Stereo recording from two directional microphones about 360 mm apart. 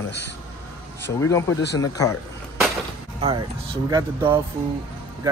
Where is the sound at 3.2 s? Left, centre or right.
Centre.